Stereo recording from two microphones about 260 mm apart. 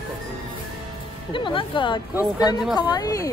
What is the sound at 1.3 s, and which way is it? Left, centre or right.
A woman's voice, centre.